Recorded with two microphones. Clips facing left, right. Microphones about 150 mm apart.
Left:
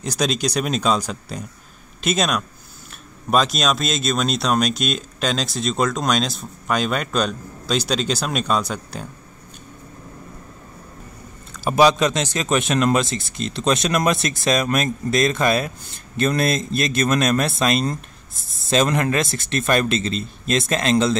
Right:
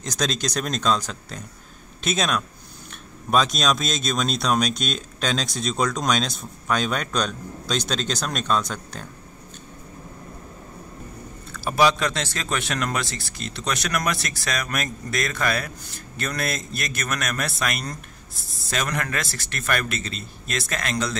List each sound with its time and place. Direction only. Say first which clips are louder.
0.0 s speech: left 4 dB; 10° left (ahead or behind)
11.5 s a man's voice: left 4 dB; 20° left (ahead or behind)